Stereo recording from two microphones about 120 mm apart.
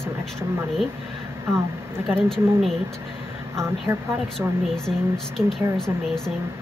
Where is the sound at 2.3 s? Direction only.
Centre (ahead or behind).